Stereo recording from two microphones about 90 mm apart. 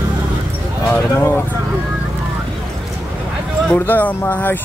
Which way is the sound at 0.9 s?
25° left (ahead or behind).